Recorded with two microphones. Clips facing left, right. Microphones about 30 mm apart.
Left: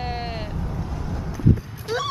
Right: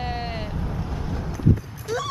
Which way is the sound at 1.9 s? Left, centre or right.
Left.